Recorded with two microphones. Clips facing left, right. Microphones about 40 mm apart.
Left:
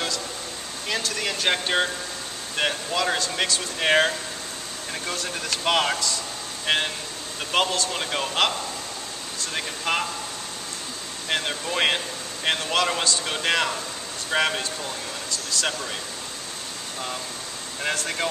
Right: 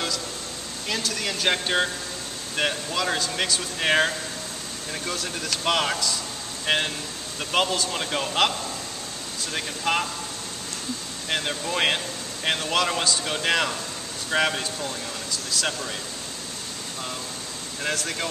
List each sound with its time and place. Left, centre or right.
0.8 s speech: centre
11.2 s speech: centre
17.8 s speech: centre